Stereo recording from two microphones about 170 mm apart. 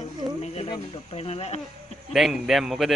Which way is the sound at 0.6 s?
30° left (ahead or behind).